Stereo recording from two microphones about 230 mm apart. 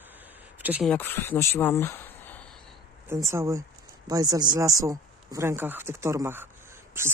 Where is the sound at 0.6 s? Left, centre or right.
Centre.